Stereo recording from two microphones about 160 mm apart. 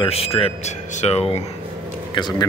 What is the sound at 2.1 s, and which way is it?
Speech, 25° left (ahead or behind).